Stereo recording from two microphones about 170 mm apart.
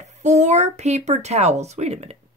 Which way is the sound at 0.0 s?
45° right (ahead or behind).